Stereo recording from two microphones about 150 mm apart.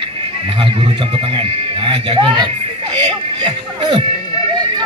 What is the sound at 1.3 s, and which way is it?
Speech, 40° right (ahead or behind).